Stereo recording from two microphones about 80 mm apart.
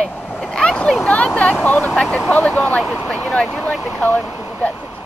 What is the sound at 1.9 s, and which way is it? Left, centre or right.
Speech, centre.